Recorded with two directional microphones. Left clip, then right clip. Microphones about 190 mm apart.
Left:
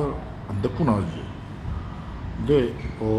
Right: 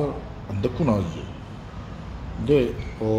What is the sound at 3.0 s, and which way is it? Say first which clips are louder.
Speech: right 1 dB; 20° right (ahead or behind).